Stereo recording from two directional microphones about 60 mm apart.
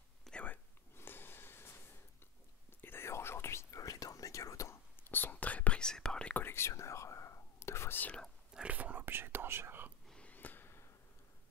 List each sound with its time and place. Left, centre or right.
0.3 s whispering: centre
0.9 s snort: left
2.8 s whispering: left
3.7 s whispering: left
5.0 s whispering: left
5.8 s whispering: centre
6.3 s whispering: left
8.5 s whispering: right
10.2 s a sound: left